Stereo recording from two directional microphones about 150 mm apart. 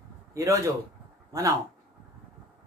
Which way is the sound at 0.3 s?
20° right (ahead or behind).